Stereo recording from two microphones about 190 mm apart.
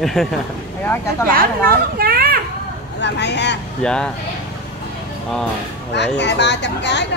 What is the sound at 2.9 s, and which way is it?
Speech, 65° left (ahead or behind).